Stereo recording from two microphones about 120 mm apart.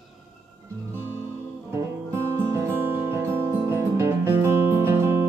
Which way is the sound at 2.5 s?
20° right (ahead or behind).